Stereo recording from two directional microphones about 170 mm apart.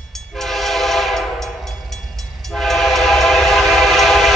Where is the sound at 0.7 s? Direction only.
Centre (ahead or behind).